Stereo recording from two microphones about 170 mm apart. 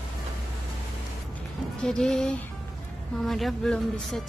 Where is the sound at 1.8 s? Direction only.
5° left (ahead or behind).